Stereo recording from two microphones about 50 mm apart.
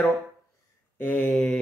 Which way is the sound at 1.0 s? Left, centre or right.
Left.